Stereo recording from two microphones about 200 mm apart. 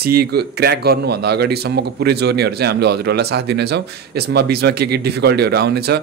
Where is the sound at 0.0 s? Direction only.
50° right (ahead or behind).